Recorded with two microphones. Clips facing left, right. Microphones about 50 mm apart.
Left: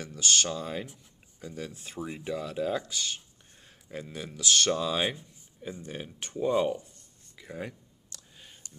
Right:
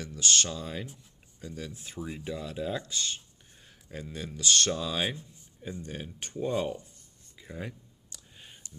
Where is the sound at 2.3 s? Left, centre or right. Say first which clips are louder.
Left 4 dB; left.